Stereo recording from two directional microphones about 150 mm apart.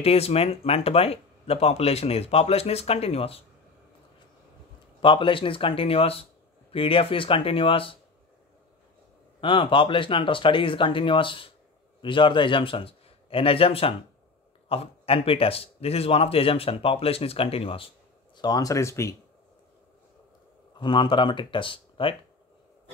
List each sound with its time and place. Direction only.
0.0 s speech: 40° left (ahead or behind)
5.0 s a man's voice: 35° left (ahead or behind)
9.4 s a man's voice: 35° left (ahead or behind)
18.3 s speech: 25° left (ahead or behind)
20.8 s a man's voice: 30° left (ahead or behind)